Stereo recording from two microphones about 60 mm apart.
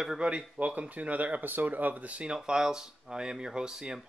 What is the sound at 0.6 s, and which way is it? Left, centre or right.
Speech, right.